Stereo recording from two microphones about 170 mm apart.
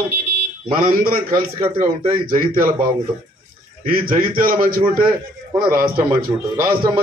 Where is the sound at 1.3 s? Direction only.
25° right (ahead or behind).